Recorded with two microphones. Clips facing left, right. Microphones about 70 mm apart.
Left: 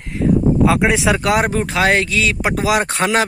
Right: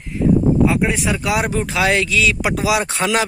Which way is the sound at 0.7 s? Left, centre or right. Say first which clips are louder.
Left 4 dB; left.